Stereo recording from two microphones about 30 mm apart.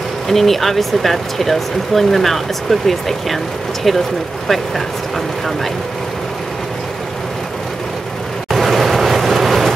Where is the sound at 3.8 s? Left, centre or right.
Centre.